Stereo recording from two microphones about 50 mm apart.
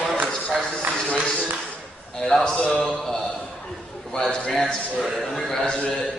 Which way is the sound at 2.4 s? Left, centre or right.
Centre.